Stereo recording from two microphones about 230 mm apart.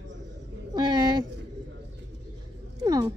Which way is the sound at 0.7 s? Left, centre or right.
Centre.